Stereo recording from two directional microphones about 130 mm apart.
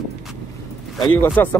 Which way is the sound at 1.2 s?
15° left (ahead or behind).